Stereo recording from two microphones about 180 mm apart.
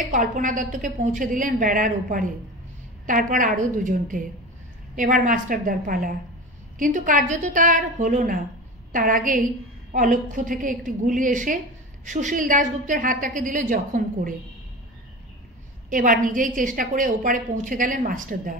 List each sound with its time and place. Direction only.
0.1 s a woman's voice: 45° right (ahead or behind)
15.9 s a woman's voice: 50° right (ahead or behind)